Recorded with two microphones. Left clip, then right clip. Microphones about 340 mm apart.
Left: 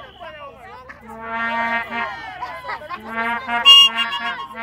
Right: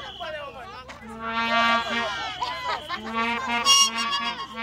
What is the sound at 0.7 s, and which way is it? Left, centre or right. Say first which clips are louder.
Music: left 2 dB; left.